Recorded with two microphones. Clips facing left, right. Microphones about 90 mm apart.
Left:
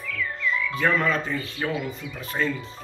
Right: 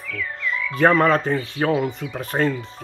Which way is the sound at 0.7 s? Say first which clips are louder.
Right 9 dB; 50° right (ahead or behind).